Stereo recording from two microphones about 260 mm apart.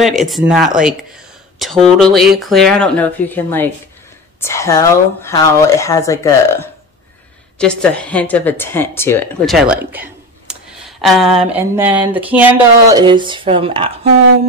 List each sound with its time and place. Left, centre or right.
0.0 s speech: centre
13.0 s speech: centre